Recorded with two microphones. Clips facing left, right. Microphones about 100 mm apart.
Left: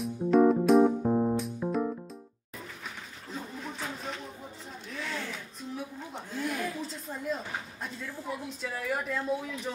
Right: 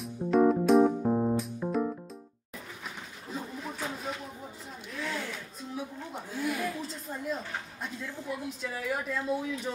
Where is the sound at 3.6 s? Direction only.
5° right (ahead or behind).